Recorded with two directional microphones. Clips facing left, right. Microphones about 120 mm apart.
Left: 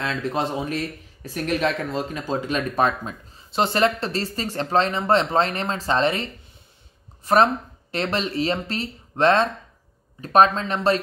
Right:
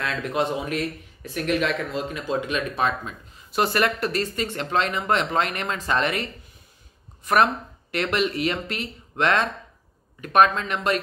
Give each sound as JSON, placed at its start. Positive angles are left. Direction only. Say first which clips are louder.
{"t": 0.0, "sound": "speech", "louder": "even", "side_deg": 30}
{"t": 3.5, "sound": "speech", "louder": "left 2 dB", "side_deg": 25}
{"t": 7.3, "sound": "speech", "louder": "left 2 dB", "side_deg": 30}